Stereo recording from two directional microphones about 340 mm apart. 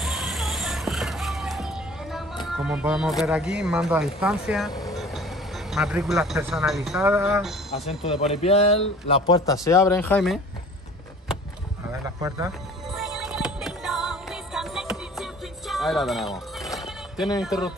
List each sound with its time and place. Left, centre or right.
0.0 s music: centre
2.4 s speech: centre
8.0 s a man's voice: centre
12.2 s music: centre
17.4 s speech: centre